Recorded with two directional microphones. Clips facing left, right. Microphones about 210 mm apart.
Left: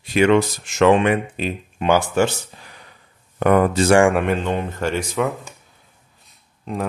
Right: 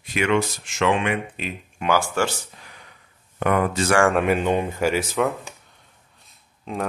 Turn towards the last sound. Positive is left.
turn(degrees=0)  # may be behind; listen again after turning